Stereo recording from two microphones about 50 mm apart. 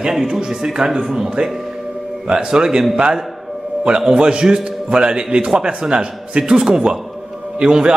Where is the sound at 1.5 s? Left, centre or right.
Centre.